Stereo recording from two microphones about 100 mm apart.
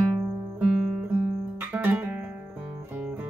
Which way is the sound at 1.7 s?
15° right (ahead or behind).